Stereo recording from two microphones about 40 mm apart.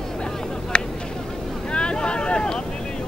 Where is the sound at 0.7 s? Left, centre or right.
Left.